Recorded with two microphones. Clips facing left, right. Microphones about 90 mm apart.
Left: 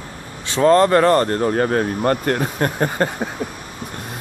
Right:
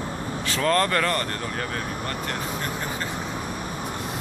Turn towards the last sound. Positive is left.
turn(degrees=55)  # may be behind; listen again after turning